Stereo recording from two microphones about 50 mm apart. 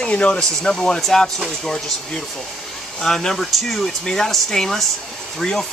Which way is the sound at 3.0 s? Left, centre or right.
Centre.